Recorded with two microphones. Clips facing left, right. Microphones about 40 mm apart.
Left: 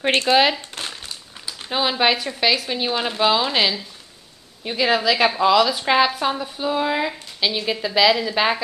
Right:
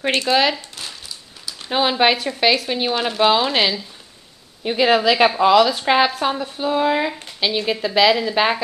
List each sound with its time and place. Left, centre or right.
0.3 s speech: centre
0.6 s crumpling: left
1.7 s a woman's voice: centre